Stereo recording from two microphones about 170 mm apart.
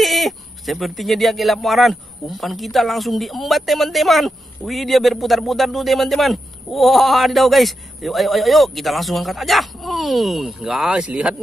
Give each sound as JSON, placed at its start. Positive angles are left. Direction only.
{"t": 0.0, "sound": "speech", "side_deg": 0}